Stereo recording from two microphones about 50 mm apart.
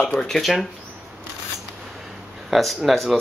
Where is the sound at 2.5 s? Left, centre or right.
Centre.